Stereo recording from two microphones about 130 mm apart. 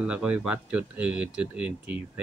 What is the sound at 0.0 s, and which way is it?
Speech, 5° right (ahead or behind).